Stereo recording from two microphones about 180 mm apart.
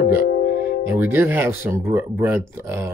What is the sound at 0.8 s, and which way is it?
Speech, 15° right (ahead or behind).